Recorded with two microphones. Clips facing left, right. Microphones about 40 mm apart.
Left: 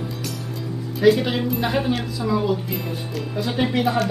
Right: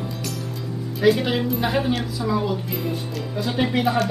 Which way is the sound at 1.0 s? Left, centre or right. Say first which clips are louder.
Left 2 dB; centre.